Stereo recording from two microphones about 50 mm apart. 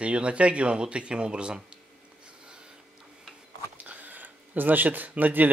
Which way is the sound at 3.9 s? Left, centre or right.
Right.